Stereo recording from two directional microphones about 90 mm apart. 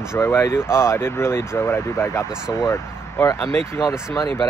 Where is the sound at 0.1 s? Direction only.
30° left (ahead or behind).